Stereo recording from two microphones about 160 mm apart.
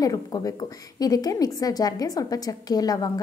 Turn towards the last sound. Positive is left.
turn(degrees=25)  # may be behind; listen again after turning